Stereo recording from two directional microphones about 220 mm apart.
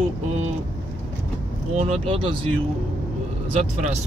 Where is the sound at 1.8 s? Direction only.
25° right (ahead or behind).